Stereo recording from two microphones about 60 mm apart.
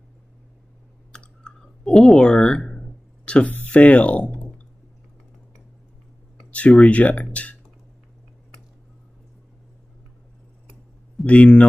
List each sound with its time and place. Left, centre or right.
1.1 s clicking: centre
3.5 s speech: left
6.5 s speech: left
11.2 s speech: left